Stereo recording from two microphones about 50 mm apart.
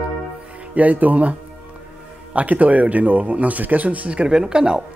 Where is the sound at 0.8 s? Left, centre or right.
Right.